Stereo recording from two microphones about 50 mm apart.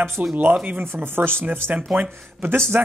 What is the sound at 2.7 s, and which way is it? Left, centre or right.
Speech, right.